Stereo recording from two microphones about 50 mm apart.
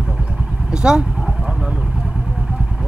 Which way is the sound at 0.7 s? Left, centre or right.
Centre.